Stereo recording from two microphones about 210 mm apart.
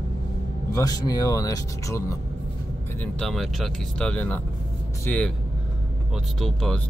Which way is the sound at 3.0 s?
Centre (ahead or behind).